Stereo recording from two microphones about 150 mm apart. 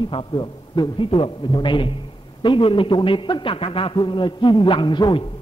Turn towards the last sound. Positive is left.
turn(degrees=30)  # may be behind; listen again after turning